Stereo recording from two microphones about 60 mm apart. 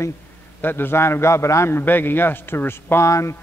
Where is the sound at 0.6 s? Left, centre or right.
Left.